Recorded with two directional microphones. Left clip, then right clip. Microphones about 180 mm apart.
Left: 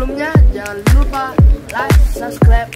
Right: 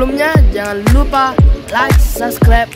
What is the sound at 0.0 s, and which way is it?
Music, 40° right (ahead or behind).